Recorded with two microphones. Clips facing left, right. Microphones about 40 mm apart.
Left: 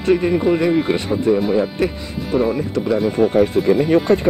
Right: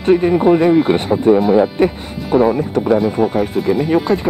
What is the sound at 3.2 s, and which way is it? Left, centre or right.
Speech, centre.